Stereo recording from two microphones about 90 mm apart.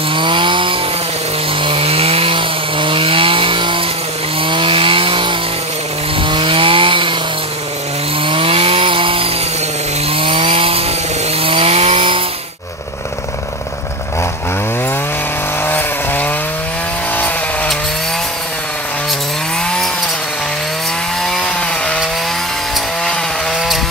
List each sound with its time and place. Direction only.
0.1 s chainsaw: 65° right (ahead or behind)
1.6 s chainsaw: 90° right; by 7.2 s 70° right (ahead or behind)
8.3 s chainsaw: 90° right
15.6 s chainsaw: 20° left (ahead or behind)